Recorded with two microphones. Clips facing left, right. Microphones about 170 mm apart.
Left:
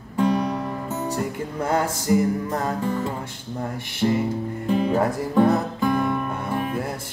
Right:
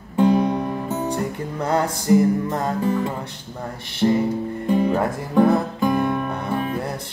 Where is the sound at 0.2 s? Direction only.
20° right (ahead or behind).